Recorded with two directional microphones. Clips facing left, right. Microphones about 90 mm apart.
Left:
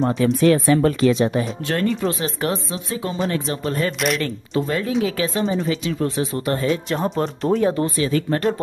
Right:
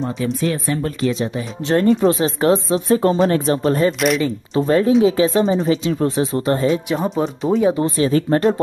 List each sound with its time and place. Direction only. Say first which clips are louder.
0.2 s speech: left 6 dB; 80° left
1.6 s speech: right 11 dB; 25° right (ahead or behind)
6.7 s speech: right 2 dB; centre (ahead or behind)
7.7 s speech: right 4 dB; 30° right (ahead or behind)